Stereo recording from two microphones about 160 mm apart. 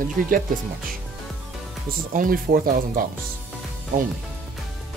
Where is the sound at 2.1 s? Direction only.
60° right (ahead or behind).